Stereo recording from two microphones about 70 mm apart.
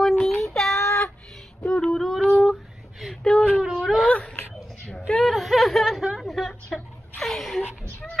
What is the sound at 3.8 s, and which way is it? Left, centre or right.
Speech, centre.